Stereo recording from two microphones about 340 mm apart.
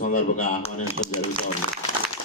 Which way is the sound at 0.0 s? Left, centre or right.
Left.